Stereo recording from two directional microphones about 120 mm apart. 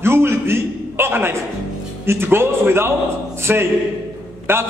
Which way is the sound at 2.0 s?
20° right (ahead or behind).